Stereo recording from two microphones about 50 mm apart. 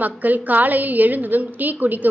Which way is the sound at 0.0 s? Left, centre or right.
Right.